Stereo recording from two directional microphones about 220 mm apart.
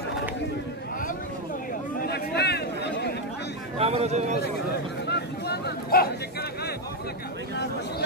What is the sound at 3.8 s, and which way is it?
Speech, 30° right (ahead or behind).